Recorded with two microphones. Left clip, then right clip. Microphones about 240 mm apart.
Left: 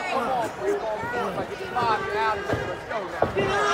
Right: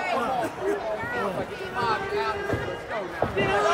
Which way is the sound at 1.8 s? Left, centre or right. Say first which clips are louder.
Left 2 dB; centre.